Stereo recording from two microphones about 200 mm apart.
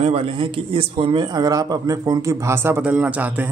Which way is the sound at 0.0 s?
30° right (ahead or behind).